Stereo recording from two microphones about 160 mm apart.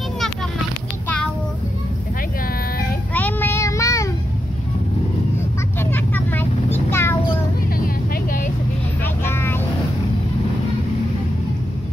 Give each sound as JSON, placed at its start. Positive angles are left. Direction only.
{"t": 3.2, "sound": "child singing", "side_deg": 10}
{"t": 5.8, "sound": "vehicle", "side_deg": 10}
{"t": 7.7, "sound": "vehicle", "side_deg": 60}
{"t": 9.0, "sound": "vehicle", "side_deg": 15}